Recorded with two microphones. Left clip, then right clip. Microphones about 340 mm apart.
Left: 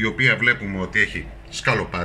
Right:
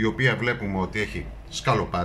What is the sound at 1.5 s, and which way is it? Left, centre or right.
Speech, centre.